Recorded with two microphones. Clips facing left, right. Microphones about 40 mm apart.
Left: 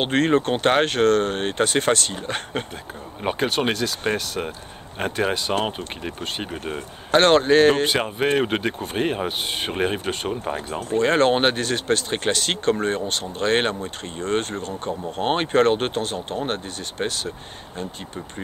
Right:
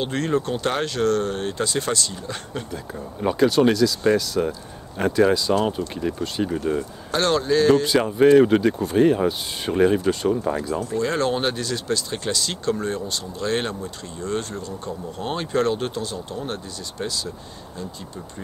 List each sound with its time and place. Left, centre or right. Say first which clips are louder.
0.0 s speech: left 4 dB; left